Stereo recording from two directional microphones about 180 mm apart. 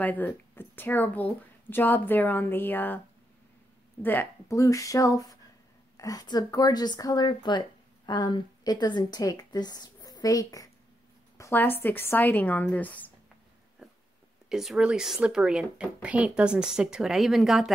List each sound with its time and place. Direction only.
0.0 s speech: 10° left (ahead or behind)
4.0 s a woman's voice: 10° left (ahead or behind)
14.5 s a woman's voice: centre (ahead or behind)